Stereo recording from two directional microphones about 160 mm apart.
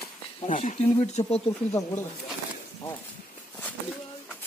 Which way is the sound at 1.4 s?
15° left (ahead or behind).